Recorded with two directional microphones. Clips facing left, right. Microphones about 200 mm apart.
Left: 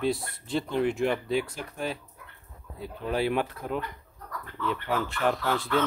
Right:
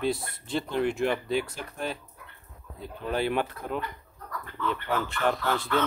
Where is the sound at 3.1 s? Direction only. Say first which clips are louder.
Left 1 dB; 5° left (ahead or behind).